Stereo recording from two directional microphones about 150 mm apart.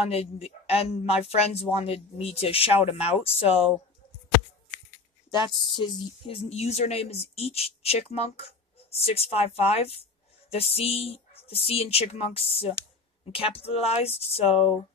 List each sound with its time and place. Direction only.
0.0 s speech: 40° left (ahead or behind)
5.3 s speech: 30° left (ahead or behind)